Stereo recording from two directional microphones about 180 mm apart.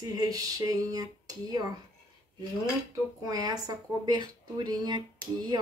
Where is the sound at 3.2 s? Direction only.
20° right (ahead or behind).